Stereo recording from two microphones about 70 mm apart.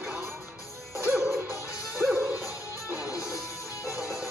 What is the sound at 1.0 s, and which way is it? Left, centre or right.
Music, right.